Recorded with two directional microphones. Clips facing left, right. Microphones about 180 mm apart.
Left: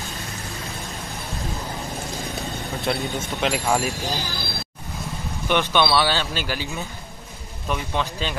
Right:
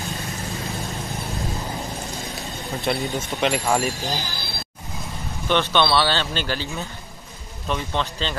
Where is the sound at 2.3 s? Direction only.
Centre (ahead or behind).